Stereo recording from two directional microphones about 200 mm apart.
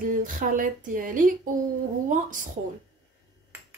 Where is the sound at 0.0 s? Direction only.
45° right (ahead or behind).